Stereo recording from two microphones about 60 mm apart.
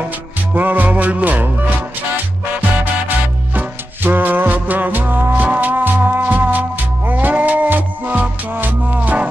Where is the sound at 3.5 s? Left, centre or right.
Right.